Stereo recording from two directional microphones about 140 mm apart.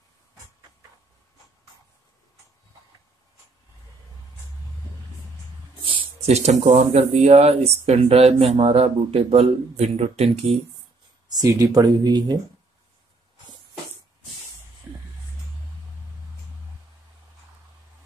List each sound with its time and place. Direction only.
5.9 s a man's voice: 45° right (ahead or behind)
11.2 s speech: 25° right (ahead or behind)